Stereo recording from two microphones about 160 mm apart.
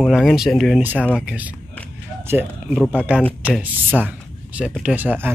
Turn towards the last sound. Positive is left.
turn(degrees=-10)  # may be behind; listen again after turning